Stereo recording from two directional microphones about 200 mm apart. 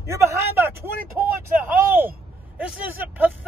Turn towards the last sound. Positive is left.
turn(degrees=-5)  # may be behind; listen again after turning